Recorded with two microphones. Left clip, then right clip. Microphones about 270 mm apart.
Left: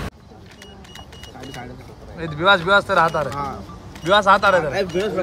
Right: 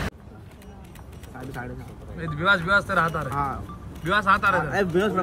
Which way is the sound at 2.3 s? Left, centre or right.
Centre.